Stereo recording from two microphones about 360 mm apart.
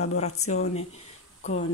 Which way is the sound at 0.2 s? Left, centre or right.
Centre.